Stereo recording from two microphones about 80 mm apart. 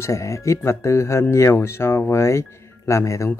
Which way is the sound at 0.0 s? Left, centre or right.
Left.